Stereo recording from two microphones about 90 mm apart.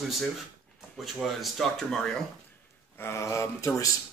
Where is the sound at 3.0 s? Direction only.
30° left (ahead or behind).